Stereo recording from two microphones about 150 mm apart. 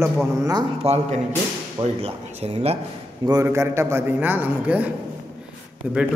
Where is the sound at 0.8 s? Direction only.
45° right (ahead or behind).